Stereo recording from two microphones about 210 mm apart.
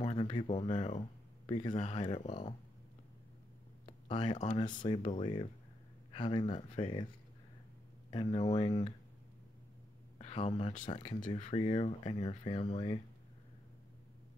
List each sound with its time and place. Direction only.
0.0 s speech: 30° left (ahead or behind)
3.8 s a sound: 25° left (ahead or behind)
4.8 s speech: 30° left (ahead or behind)
8.1 s speech: 25° left (ahead or behind)
10.1 s speech: 30° left (ahead or behind)